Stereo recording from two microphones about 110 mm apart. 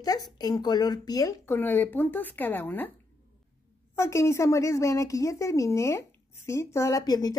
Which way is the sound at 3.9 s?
25° left (ahead or behind).